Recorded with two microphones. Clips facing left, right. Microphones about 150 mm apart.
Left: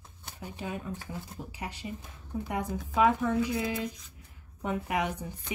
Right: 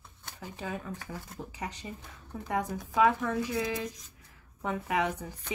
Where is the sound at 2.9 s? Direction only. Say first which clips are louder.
Left 1 dB; 25° left (ahead or behind).